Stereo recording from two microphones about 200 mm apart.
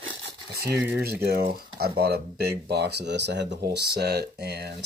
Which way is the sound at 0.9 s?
55° right (ahead or behind).